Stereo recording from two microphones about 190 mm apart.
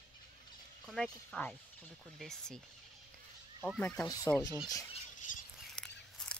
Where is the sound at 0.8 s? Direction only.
Centre (ahead or behind).